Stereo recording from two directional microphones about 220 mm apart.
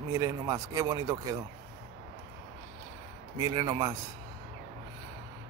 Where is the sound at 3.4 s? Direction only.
20° right (ahead or behind).